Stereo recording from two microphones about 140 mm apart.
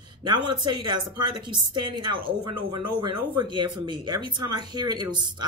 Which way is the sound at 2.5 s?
35° right (ahead or behind).